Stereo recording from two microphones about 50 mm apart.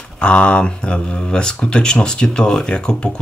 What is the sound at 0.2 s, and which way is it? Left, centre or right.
Speech, left.